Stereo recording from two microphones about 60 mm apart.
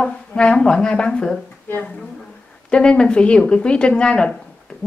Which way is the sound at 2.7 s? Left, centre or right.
Centre.